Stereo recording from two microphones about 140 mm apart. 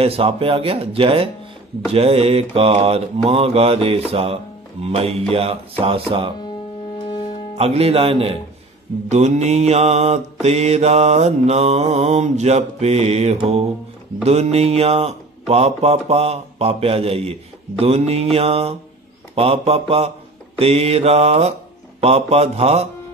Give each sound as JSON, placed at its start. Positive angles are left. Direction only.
{"t": 0.0, "sound": "speech", "side_deg": -45}
{"t": 1.9, "sound": "mantra", "side_deg": -45}
{"t": 7.5, "sound": "mantra", "side_deg": -45}